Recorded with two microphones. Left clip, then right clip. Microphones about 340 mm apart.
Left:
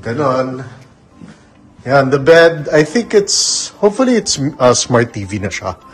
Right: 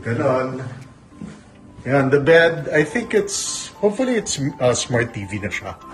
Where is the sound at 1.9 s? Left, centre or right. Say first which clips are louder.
Left 5 dB; centre.